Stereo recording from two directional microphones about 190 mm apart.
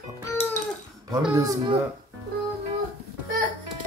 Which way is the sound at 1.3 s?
20° right (ahead or behind).